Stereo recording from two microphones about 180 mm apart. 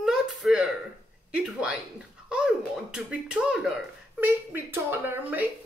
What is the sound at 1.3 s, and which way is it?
Speech, 5° right (ahead or behind).